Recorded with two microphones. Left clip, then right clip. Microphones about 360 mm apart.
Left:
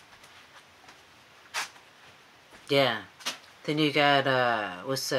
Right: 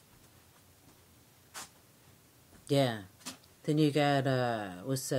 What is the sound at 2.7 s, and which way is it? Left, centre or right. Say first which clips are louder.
Speech: left 6 dB; right.